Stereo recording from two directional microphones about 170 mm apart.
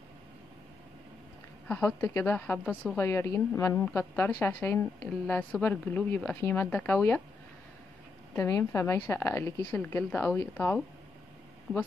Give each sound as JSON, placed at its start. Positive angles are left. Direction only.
{"t": 1.7, "sound": "a woman's voice", "side_deg": 10}
{"t": 8.4, "sound": "a woman's voice", "side_deg": 20}